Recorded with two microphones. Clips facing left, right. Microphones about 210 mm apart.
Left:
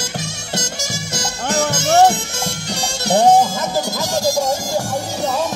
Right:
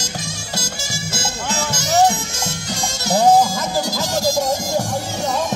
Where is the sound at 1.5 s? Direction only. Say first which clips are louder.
Left 5 dB; 60° left (ahead or behind).